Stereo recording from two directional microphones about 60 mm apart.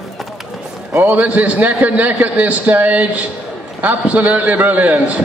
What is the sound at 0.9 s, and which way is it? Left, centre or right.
A man's voice, right.